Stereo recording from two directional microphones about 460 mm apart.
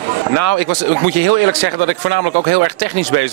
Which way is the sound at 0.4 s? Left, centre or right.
Right.